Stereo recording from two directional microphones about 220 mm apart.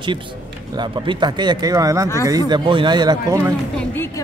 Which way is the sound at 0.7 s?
20° right (ahead or behind).